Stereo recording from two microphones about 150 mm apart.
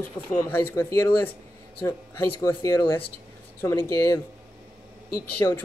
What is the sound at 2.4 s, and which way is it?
Speech, 20° left (ahead or behind).